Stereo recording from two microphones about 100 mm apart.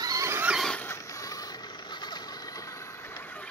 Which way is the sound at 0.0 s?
35° right (ahead or behind).